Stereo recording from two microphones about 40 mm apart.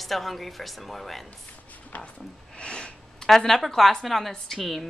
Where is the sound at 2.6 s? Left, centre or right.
Left.